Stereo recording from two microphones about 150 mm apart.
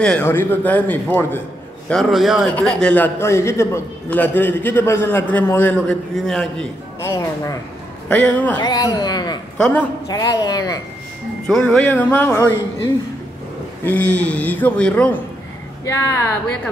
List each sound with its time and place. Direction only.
0.2 s a man's voice: 15° left (ahead or behind)
1.9 s a man's voice: centre (ahead or behind)
7.0 s a woman's voice: 20° left (ahead or behind)
8.5 s a woman's voice: 25° left (ahead or behind)
9.6 s a man's voice: 10° left (ahead or behind)
10.0 s a woman's voice: 25° left (ahead or behind)
11.4 s a man's voice: 5° left (ahead or behind); by 16.3 s 20° left (ahead or behind)